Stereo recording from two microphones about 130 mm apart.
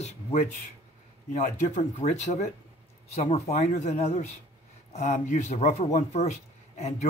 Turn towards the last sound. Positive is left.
turn(degrees=60)  # may be behind; listen again after turning